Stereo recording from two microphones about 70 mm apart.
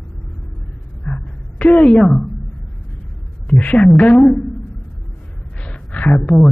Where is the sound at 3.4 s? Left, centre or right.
Centre.